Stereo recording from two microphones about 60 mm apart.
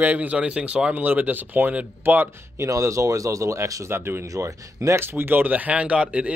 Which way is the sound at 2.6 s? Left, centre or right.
Right.